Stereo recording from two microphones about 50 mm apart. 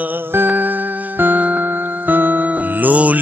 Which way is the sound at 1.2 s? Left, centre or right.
Right.